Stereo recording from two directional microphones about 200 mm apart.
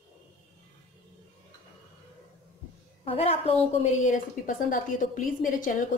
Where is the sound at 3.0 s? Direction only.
30° left (ahead or behind).